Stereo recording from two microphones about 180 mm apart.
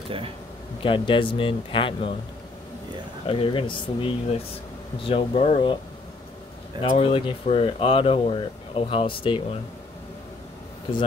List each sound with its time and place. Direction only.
0.8 s speech: 30° left (ahead or behind)
3.3 s speech: 30° left (ahead or behind)
6.8 s speech: 30° left (ahead or behind)